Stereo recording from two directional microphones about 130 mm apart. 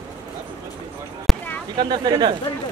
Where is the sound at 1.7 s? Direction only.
35° right (ahead or behind).